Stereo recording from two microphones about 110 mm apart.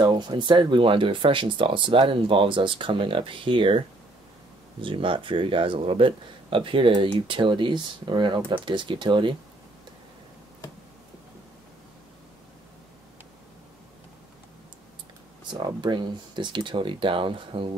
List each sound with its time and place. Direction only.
0.0 s speech: 45° right (ahead or behind)
4.8 s speech: 50° right (ahead or behind)
15.5 s speech: 45° right (ahead or behind)